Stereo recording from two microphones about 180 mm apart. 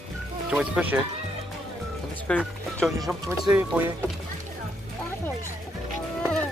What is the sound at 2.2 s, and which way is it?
Speech, centre (ahead or behind).